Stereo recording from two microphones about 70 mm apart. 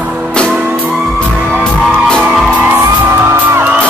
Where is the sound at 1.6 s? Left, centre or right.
Centre.